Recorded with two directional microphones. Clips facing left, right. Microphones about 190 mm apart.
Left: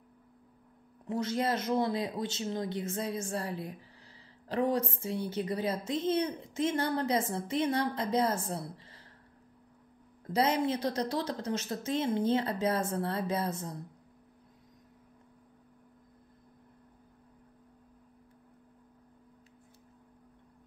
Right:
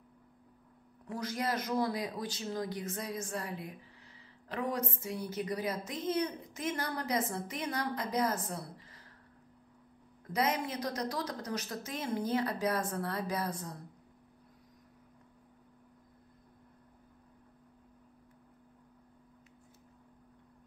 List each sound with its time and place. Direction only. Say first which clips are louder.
1.0 s a woman's voice: left 5 dB; 25° left (ahead or behind)
10.2 s a woman's voice: left 4 dB; 30° left (ahead or behind)